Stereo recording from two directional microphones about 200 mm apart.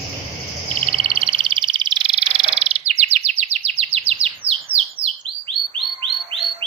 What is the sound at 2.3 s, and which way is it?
Bird, 30° right (ahead or behind).